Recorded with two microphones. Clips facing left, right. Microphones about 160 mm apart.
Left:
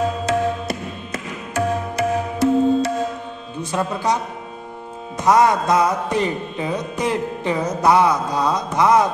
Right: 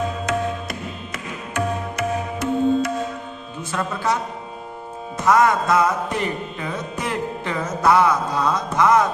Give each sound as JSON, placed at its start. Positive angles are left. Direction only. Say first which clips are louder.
{"t": 0.2, "sound": "music", "louder": "left 3 dB", "side_deg": 30}
{"t": 3.7, "sound": "music", "louder": "left 2 dB", "side_deg": 15}
{"t": 5.2, "sound": "music", "louder": "left 2 dB", "side_deg": 20}